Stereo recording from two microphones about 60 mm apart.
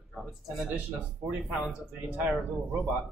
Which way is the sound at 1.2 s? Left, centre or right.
Right.